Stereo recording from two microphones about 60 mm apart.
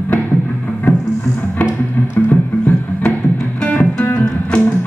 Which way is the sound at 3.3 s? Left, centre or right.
Centre.